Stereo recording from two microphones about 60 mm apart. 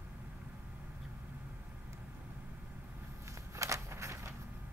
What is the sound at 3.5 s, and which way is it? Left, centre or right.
Walk, right.